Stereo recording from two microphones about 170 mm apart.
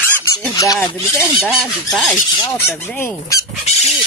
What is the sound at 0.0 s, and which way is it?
Fowl, 10° left (ahead or behind).